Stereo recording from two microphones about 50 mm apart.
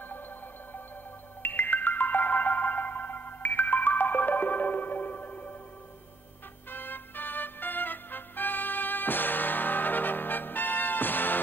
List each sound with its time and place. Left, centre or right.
1.4 s music: left
6.7 s music: left